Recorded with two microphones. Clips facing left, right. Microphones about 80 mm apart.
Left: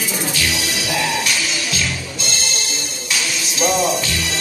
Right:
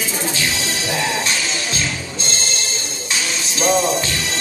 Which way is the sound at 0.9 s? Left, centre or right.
Right.